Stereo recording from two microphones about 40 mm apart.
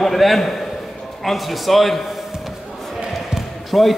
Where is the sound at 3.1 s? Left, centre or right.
Centre.